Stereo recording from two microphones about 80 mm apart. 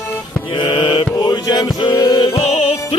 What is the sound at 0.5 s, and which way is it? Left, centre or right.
Music, left.